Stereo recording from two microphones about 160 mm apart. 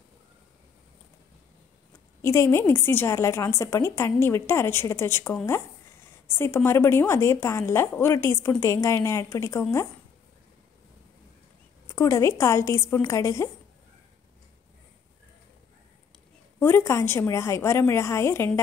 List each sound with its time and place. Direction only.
2.2 s a woman's voice: 15° left (ahead or behind)
11.9 s a woman's voice: 20° left (ahead or behind)
16.5 s a woman's voice: 15° left (ahead or behind)